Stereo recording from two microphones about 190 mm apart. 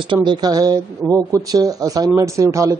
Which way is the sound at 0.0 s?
25° right (ahead or behind).